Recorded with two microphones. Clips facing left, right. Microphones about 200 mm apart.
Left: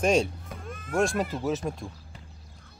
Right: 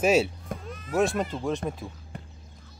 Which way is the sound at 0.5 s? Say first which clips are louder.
Right 6 dB; 50° right (ahead or behind).